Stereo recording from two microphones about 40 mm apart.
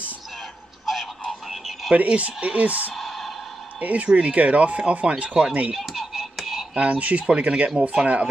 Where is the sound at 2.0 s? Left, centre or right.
Right.